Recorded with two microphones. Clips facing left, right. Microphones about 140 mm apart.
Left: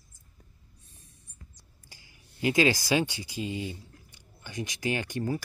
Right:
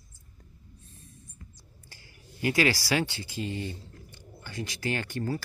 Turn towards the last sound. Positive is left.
turn(degrees=15)  # may be behind; listen again after turning